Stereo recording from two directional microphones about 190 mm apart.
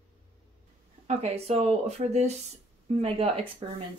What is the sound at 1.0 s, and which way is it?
Speech, 35° right (ahead or behind).